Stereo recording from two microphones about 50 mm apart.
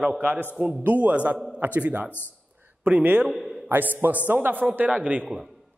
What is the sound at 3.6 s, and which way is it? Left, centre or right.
A man's voice, right.